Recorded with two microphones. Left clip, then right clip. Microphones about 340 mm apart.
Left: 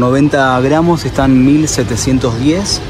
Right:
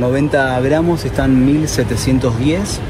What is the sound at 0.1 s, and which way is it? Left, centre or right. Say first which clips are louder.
Speech: left 4 dB; centre.